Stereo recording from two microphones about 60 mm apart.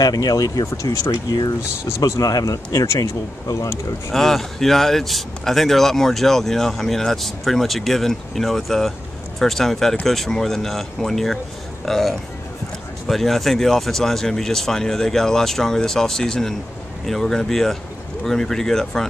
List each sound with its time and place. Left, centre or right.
0.0 s speech: left
3.0 s speech: left
4.1 s speech: centre